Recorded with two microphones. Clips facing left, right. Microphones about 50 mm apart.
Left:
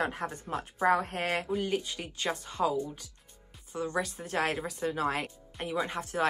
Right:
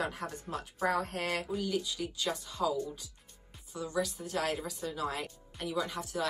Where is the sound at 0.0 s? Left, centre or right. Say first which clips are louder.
Left 4 dB; left.